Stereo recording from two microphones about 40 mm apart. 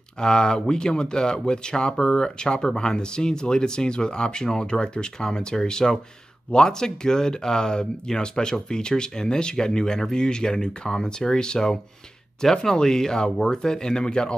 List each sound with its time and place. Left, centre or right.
0.2 s speech: centre